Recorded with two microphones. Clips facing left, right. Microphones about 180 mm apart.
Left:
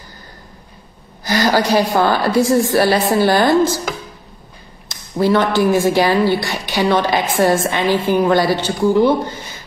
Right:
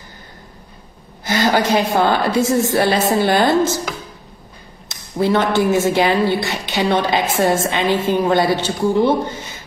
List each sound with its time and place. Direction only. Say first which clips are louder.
1.2 s a woman's voice: left 1 dB; 25° right (ahead or behind)
4.8 s a woman's voice: left 2 dB; 20° right (ahead or behind)